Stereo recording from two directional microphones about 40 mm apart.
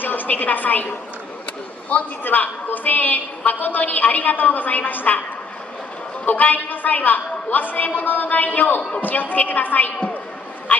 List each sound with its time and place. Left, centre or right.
0.0 s a woman's voice: left
1.9 s a man's voice: left
6.2 s a woman's voice: left
10.7 s a sound: left